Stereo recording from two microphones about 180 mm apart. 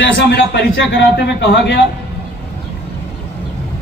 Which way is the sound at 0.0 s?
60° left (ahead or behind).